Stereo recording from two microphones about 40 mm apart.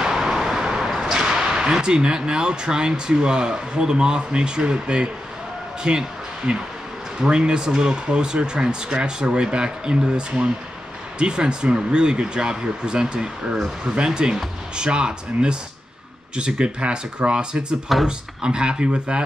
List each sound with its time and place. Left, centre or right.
0.2 s vehicle: centre
1.1 s a sound: centre
1.5 s speech: centre